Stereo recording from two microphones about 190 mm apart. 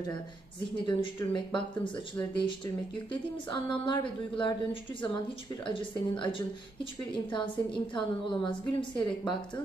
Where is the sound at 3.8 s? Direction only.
25° left (ahead or behind).